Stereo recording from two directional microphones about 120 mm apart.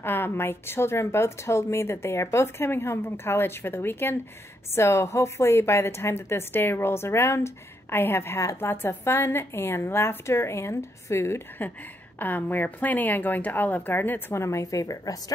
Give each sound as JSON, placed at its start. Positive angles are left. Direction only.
{"t": 0.0, "sound": "a woman's voice", "side_deg": 20}